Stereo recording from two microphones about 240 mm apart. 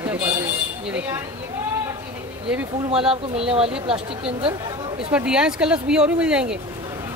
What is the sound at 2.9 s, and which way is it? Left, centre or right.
Speech, right.